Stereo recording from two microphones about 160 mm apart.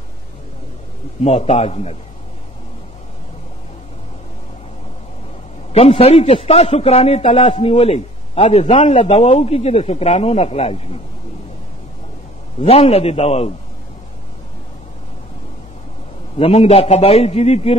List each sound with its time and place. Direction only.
1.2 s a man's voice: 40° left (ahead or behind)
5.7 s a man's voice: 40° left (ahead or behind)
12.6 s a man's voice: 40° left (ahead or behind)
16.3 s a man's voice: 40° left (ahead or behind)